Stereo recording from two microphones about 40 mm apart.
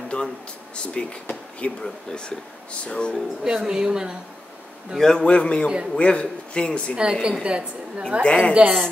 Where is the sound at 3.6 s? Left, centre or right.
Centre.